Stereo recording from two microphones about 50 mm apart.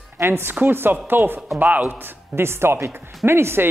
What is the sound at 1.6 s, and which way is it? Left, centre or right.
Speech, right.